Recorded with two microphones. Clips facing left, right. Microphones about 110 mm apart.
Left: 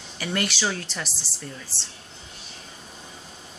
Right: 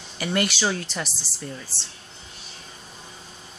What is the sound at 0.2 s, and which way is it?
Speech, 5° right (ahead or behind).